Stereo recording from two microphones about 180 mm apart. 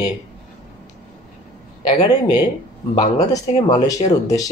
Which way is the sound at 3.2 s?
20° left (ahead or behind).